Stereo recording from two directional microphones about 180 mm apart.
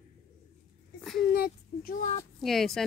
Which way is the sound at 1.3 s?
55° left (ahead or behind).